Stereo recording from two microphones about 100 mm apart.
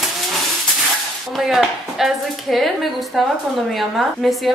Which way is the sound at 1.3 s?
5° right (ahead or behind).